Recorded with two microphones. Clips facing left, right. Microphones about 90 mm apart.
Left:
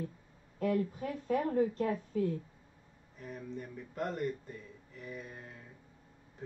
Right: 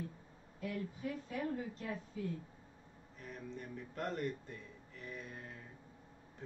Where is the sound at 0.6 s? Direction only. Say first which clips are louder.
Left 10 dB; 65° left (ahead or behind).